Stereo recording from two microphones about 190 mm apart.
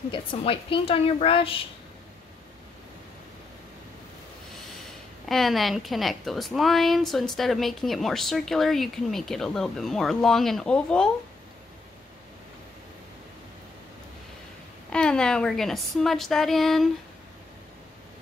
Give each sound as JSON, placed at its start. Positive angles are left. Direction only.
{"t": 0.1, "sound": "a woman's voice", "side_deg": 25}
{"t": 5.3, "sound": "a woman's voice", "side_deg": 0}
{"t": 14.9, "sound": "a woman's voice", "side_deg": 5}